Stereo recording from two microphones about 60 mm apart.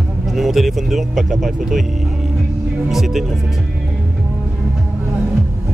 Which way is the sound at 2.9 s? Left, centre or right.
Centre.